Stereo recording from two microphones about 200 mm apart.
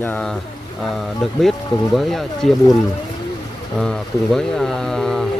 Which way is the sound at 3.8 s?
5° left (ahead or behind).